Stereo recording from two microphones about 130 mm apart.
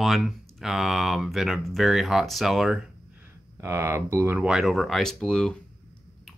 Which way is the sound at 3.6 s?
20° right (ahead or behind).